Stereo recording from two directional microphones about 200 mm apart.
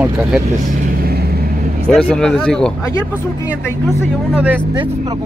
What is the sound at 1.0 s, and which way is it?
Vehicle, 50° right (ahead or behind).